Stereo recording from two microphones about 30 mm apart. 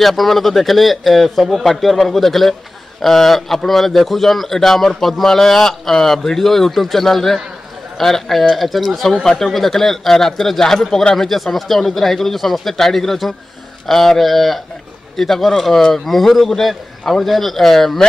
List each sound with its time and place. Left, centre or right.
0.0 s a man's voice: centre
9.2 s speech: centre
9.5 s a man's voice: centre